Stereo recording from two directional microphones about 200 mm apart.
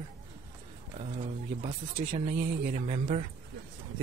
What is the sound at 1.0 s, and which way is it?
Speech, 30° right (ahead or behind).